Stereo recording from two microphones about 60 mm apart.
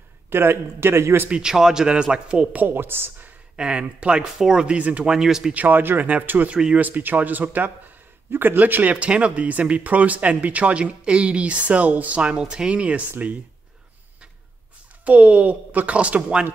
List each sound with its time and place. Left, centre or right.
0.3 s a man's voice: right
1.3 s speech: centre; by 2.8 s right
2.8 s a man's voice: right
3.5 s speech: centre
5.1 s speech: centre
5.5 s speech: right
6.5 s speech: centre
6.8 s a man's voice: right
15.0 s speech: right